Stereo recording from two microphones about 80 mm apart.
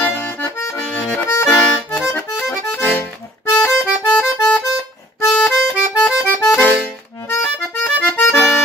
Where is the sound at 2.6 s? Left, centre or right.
Centre.